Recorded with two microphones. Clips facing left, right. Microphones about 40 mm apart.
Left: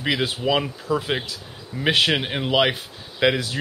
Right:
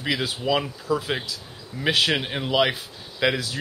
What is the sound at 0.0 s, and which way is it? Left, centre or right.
A man's voice, left.